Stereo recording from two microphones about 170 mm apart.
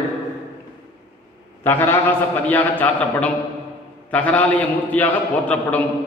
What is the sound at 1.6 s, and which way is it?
A man's voice, 15° left (ahead or behind).